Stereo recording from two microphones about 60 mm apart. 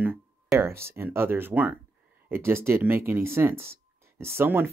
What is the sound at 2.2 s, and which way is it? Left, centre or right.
Speech, right.